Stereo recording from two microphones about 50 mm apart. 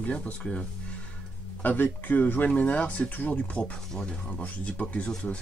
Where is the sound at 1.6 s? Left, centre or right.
Left.